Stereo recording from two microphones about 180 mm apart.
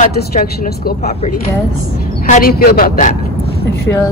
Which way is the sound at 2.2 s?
50° left (ahead or behind).